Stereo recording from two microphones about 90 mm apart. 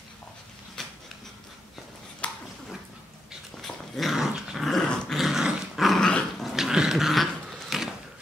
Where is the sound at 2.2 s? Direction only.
15° left (ahead or behind).